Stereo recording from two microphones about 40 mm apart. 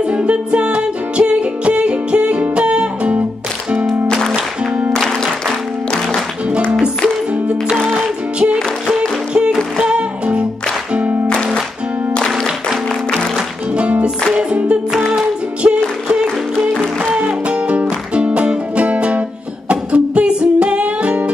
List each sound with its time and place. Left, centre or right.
0.0 s music: right
4.1 s music: centre
9.9 s music: right
11.2 s music: left
13.7 s music: right